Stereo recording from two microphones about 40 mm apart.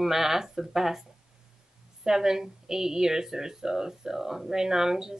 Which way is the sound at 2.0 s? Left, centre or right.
Centre.